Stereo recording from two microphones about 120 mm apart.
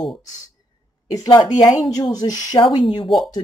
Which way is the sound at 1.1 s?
30° left (ahead or behind).